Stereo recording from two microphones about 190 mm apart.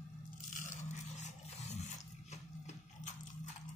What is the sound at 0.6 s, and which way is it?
Scrape, 40° left (ahead or behind).